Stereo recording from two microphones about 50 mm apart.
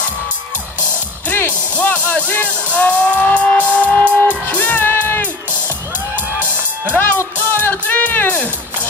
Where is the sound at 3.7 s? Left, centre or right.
Left.